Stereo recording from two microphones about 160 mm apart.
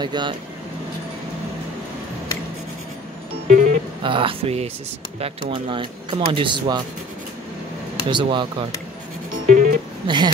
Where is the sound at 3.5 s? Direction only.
55° right (ahead or behind).